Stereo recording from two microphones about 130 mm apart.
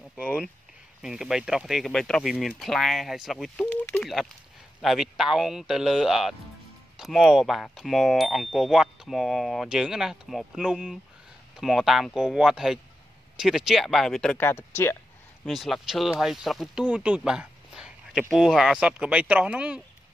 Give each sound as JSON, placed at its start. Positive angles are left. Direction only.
{"t": 1.0, "sound": "speech", "side_deg": -5}
{"t": 14.4, "sound": "speech", "side_deg": 20}
{"t": 15.4, "sound": "speech", "side_deg": 0}
{"t": 16.8, "sound": "a sound", "side_deg": -10}
{"t": 18.3, "sound": "speech", "side_deg": -5}